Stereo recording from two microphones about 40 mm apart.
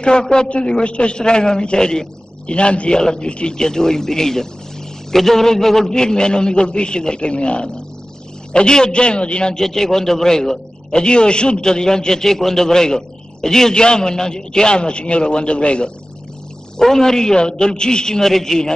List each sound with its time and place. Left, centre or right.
0.2 s a man's voice: centre
3.0 s a man's voice: centre
9.6 s a man's voice: centre
10.9 s a man's voice: left
16.7 s a man's voice: centre